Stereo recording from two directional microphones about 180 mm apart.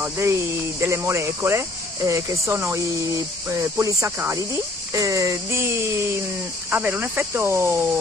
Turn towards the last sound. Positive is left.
turn(degrees=-15)  # may be behind; listen again after turning